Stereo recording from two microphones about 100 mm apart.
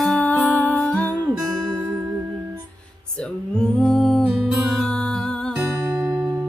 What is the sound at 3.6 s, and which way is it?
Humming, 5° left (ahead or behind).